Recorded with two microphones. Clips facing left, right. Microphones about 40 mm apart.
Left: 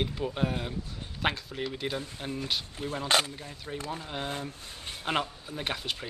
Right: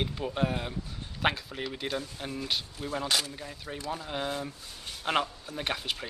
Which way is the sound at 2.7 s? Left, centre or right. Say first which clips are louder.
Even; left.